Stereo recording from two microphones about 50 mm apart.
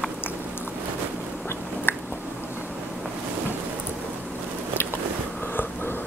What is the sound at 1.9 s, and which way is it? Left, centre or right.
Squish, left.